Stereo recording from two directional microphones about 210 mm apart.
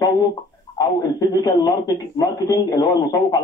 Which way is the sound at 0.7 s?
15° left (ahead or behind).